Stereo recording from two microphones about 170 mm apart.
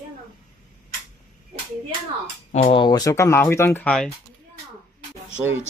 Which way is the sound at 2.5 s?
35° left (ahead or behind).